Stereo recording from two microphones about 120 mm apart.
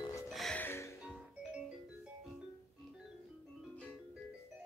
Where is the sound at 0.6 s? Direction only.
20° left (ahead or behind).